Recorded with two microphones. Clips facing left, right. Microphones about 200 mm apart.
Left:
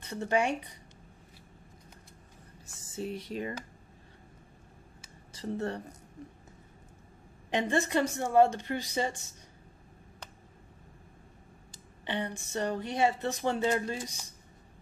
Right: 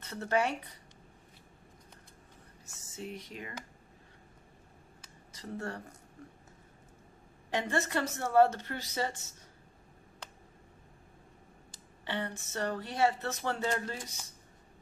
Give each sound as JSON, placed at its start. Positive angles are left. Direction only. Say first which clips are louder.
{"t": 0.0, "sound": "a woman's voice", "louder": "left 2 dB", "side_deg": 15}
{"t": 2.6, "sound": "speech", "louder": "left 6 dB", "side_deg": 30}
{"t": 5.3, "sound": "speech", "louder": "left 6 dB", "side_deg": 25}
{"t": 7.5, "sound": "a woman's voice", "louder": "left 4 dB", "side_deg": 15}
{"t": 12.0, "sound": "a woman's voice", "louder": "left 2 dB", "side_deg": 15}